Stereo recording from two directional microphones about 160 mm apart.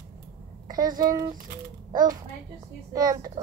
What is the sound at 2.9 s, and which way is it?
Speech, 25° right (ahead or behind).